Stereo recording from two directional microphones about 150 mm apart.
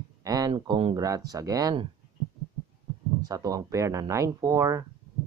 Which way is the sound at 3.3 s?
25° right (ahead or behind).